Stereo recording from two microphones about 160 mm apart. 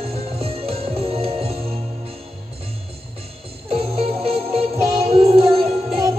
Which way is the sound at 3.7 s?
35° right (ahead or behind).